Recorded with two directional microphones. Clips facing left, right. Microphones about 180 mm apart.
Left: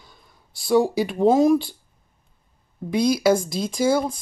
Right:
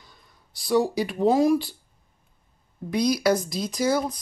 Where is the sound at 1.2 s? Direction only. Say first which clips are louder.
Left 3 dB; 25° left (ahead or behind).